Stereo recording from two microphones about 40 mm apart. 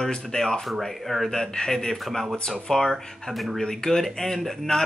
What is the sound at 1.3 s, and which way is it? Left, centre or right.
Speech, centre.